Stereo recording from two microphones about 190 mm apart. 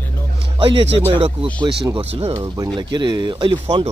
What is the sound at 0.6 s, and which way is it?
Speech, 30° right (ahead or behind).